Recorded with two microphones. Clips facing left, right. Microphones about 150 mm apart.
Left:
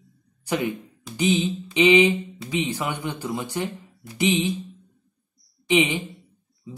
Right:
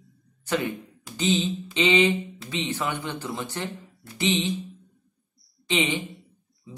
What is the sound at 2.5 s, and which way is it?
Speech, 10° left (ahead or behind).